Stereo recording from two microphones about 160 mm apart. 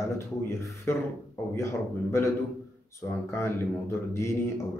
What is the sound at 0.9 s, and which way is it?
Speech, 15° left (ahead or behind).